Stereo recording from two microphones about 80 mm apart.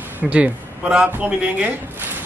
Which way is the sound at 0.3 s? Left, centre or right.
Centre.